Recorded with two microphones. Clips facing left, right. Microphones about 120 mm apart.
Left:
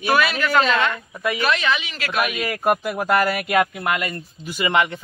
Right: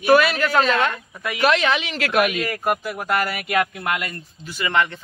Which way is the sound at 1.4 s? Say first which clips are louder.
Right 6 dB; 65° right (ahead or behind).